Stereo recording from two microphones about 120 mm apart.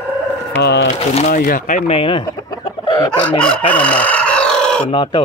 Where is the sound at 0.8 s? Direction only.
80° left.